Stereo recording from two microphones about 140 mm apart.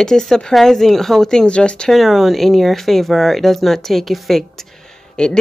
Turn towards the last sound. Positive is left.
turn(degrees=5)  # may be behind; listen again after turning